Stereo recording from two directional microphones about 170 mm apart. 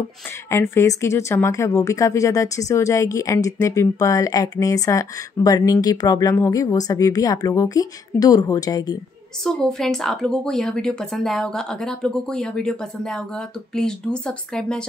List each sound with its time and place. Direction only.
0.5 s speech: 15° left (ahead or behind)
9.4 s a woman's voice: centre (ahead or behind)